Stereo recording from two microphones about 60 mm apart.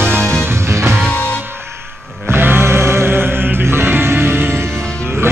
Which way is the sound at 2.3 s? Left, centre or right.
Right.